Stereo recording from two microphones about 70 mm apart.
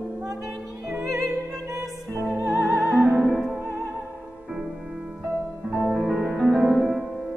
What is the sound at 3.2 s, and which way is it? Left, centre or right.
Music, centre.